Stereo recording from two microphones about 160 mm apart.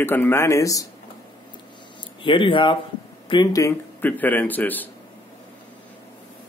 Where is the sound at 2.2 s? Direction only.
30° left (ahead or behind); by 4.8 s 10° left (ahead or behind).